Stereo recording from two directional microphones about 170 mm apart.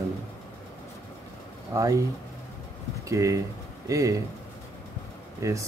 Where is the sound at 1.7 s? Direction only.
20° right (ahead or behind).